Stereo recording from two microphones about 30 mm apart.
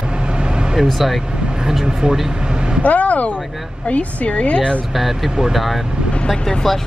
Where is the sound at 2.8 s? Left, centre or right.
Left.